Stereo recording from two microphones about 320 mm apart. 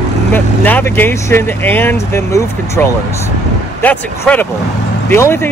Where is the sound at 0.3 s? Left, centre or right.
Centre.